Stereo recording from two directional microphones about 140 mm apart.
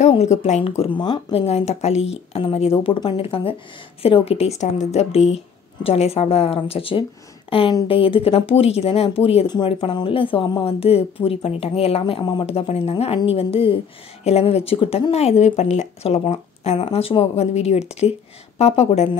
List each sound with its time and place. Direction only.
0.1 s speech: 45° left (ahead or behind)